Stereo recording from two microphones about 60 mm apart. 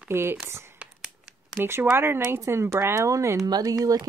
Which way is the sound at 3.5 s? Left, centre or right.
Right.